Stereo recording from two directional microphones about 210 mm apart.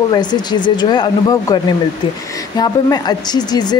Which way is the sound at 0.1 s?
20° left (ahead or behind).